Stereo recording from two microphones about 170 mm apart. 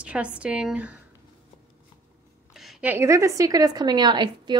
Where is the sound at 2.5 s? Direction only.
Centre (ahead or behind); by 4.5 s 25° right (ahead or behind).